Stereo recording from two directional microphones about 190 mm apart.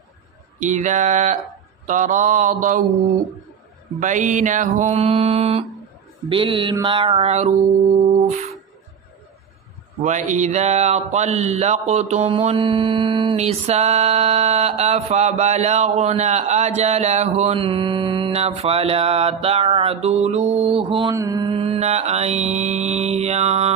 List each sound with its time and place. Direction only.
0.6 s speech: 40° right (ahead or behind)
4.0 s speech: 40° right (ahead or behind)
6.2 s mantra: 25° right (ahead or behind)
8.0 s music: 20° right (ahead or behind)
10.0 s speech: 40° right (ahead or behind); by 21.5 s 20° right (ahead or behind)
21.5 s speech: 35° right (ahead or behind)